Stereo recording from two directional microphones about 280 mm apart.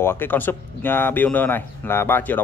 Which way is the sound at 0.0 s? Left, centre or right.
Centre.